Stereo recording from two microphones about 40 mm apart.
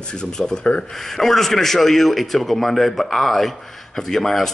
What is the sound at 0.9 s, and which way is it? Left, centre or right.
A man's voice, centre.